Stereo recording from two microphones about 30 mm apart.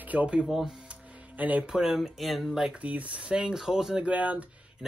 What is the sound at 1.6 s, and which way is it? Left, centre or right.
Speech, right.